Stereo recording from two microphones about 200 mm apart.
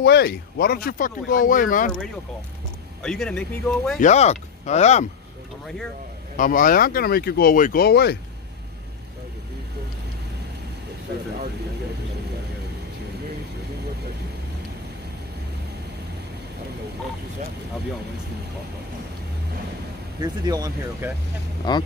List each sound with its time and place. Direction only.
0.0 s speech: 55° left (ahead or behind)
3.0 s speech: 5° left (ahead or behind)
4.0 s speech: 35° left (ahead or behind)
6.3 s speech: 45° left (ahead or behind)
20.2 s speech: 20° right (ahead or behind)
21.6 s speech: 20° left (ahead or behind)